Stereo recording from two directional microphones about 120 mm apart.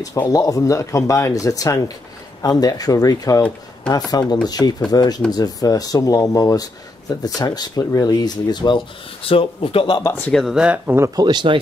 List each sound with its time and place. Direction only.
0.0 s speech: 30° left (ahead or behind); by 10.0 s 50° left (ahead or behind)
10.3 s speech: 5° right (ahead or behind)
11.0 s speech: 35° right (ahead or behind)